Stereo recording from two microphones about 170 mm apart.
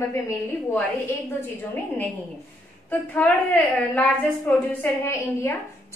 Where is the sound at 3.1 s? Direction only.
10° left (ahead or behind).